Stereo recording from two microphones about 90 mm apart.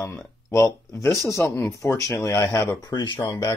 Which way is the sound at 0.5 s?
35° left (ahead or behind).